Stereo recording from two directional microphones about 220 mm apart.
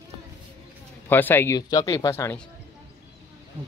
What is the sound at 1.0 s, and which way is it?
Speech, 10° left (ahead or behind).